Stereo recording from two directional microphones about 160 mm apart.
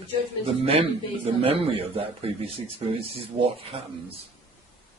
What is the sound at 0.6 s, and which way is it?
Speech, 35° right (ahead or behind).